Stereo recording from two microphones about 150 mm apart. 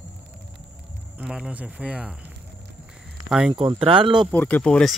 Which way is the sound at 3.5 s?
35° right (ahead or behind).